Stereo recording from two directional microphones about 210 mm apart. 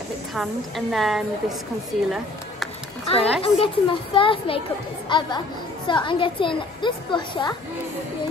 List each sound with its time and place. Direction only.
0.3 s a woman's voice: centre (ahead or behind)
3.1 s a woman's voice: 30° left (ahead or behind)